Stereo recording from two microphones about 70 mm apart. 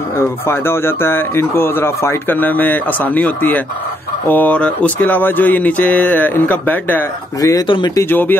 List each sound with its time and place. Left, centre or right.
0.5 s speech: left
7.4 s speech: left
8.0 s speech: left